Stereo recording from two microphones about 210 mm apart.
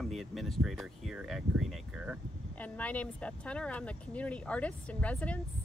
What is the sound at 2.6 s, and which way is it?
Speech, 5° left (ahead or behind).